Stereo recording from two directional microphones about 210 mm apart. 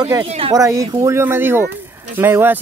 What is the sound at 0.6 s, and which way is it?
Speech, 15° right (ahead or behind).